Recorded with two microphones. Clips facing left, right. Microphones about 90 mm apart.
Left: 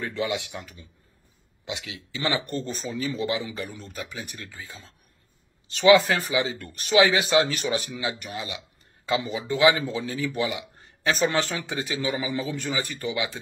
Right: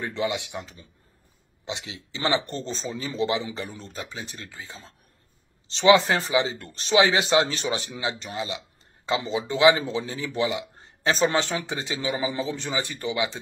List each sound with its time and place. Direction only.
0.0 s speech: 20° right (ahead or behind)